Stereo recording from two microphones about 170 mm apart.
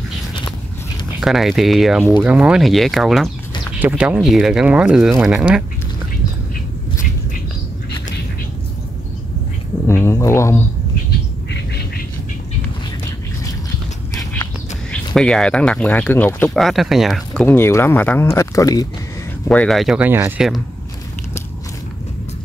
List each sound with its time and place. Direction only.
1.2 s speech: centre (ahead or behind)
9.8 s a sound: 15° left (ahead or behind)
15.1 s speech: 5° left (ahead or behind); by 18.9 s 20° left (ahead or behind)
19.4 s speech: 10° left (ahead or behind); by 20.4 s 10° right (ahead or behind)